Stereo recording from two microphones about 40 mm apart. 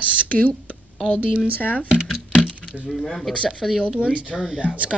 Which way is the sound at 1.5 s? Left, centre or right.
Left.